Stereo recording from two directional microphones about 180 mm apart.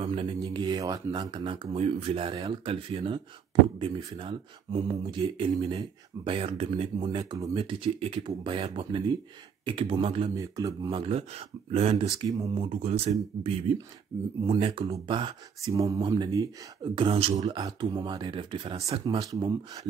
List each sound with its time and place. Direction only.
0.0 s a sound: 30° right (ahead or behind)
0.4 s speech: 25° right (ahead or behind)
7.5 s speech: 30° right (ahead or behind)
10.3 s speech: 20° right (ahead or behind)
11.0 s speech: 35° right (ahead or behind)
12.3 s speech: 20° right (ahead or behind)
12.6 s speech: 35° right (ahead or behind); by 16.4 s 20° right (ahead or behind)
16.9 s speech: 30° right (ahead or behind)